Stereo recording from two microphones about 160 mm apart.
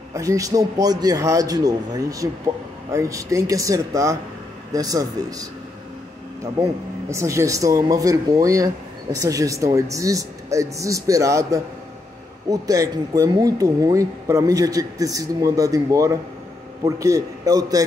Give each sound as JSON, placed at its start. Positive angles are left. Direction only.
{"t": 0.1, "sound": "speech", "side_deg": -20}